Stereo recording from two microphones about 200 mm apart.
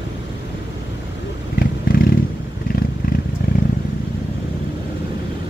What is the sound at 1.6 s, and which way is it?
Vehicle, 45° left (ahead or behind).